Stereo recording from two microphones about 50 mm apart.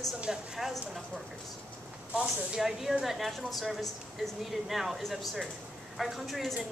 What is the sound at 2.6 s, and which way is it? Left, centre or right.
A woman's voice, centre.